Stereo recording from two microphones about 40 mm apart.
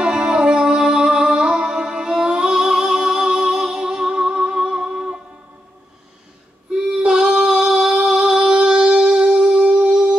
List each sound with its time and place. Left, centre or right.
0.0 s music: centre
6.7 s female singing: centre